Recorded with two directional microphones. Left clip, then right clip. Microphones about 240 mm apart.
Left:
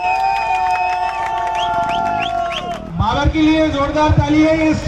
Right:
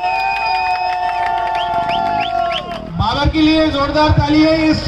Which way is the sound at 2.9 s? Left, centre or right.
Right.